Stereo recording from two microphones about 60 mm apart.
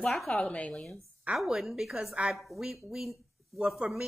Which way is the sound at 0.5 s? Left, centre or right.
Left.